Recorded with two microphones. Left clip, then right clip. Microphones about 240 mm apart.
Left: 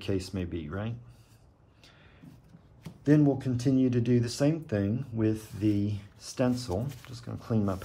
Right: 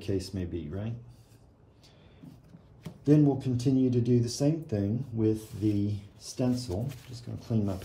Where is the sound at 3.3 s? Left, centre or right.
Centre.